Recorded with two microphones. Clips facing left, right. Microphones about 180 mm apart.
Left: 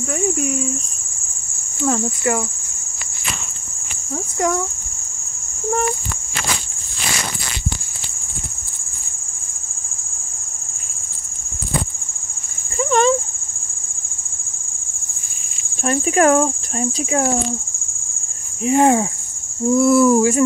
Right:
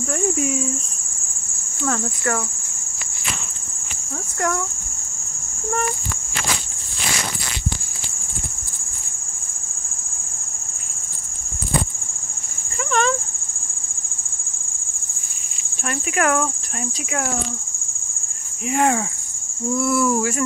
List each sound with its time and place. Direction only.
0.4 s speech: centre (ahead or behind)
1.9 s speech: 15° left (ahead or behind)
12.7 s a sound: 30° left (ahead or behind)
15.8 s speech: 30° left (ahead or behind)
18.7 s speech: 30° left (ahead or behind)